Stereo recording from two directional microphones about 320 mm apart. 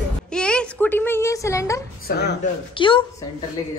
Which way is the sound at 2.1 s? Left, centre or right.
Left.